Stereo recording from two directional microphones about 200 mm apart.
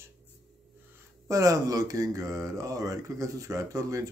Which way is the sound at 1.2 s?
15° right (ahead or behind).